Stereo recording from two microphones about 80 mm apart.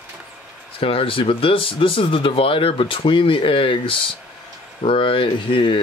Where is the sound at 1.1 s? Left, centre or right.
Left.